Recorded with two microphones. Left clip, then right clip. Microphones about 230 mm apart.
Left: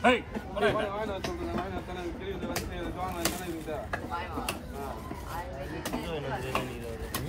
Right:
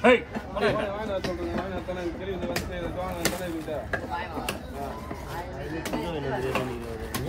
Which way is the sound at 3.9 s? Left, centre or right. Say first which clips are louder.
Right 4 dB; right.